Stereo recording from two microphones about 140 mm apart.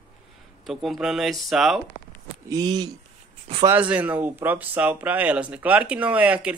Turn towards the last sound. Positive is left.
turn(degrees=-10)  # may be behind; listen again after turning